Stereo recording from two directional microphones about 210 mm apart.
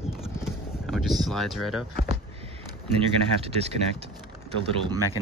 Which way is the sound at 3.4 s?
30° right (ahead or behind).